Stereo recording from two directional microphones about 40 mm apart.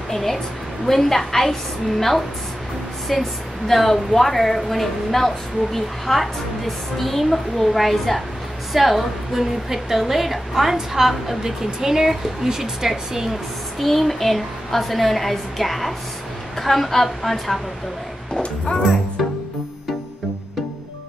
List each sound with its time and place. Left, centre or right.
0.1 s a woman's voice: centre
13.3 s a woman's voice: centre
18.3 s speech: centre